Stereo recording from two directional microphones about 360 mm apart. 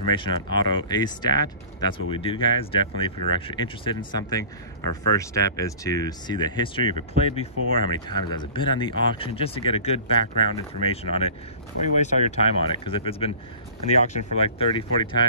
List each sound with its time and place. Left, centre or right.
0.1 s speech: centre